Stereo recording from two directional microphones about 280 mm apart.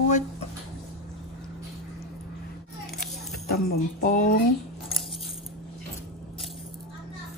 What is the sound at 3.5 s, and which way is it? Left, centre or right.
Speech, left.